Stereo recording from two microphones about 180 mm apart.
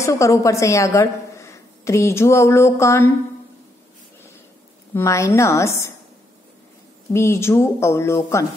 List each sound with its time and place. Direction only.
0.0 s a woman's voice: 15° left (ahead or behind)
4.9 s speech: 15° left (ahead or behind)
7.1 s speech: 15° left (ahead or behind)